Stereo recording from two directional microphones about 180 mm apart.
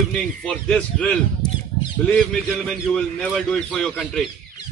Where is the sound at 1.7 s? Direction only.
45° left (ahead or behind).